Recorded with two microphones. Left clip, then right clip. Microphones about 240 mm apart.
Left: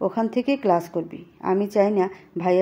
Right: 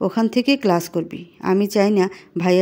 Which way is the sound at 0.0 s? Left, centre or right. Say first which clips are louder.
Right 3 dB; right.